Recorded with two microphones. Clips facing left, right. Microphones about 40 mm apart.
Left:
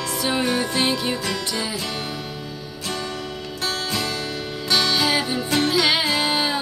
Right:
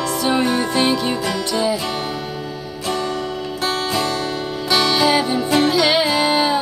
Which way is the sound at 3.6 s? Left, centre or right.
Centre.